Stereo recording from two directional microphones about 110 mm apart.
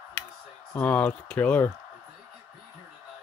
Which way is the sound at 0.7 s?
15° left (ahead or behind).